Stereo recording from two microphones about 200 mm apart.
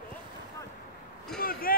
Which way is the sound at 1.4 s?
45° left (ahead or behind).